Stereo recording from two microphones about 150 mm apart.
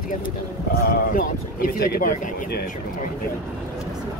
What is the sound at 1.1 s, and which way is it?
Speech, 75° left (ahead or behind).